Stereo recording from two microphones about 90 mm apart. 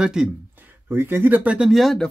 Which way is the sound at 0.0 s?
10° right (ahead or behind).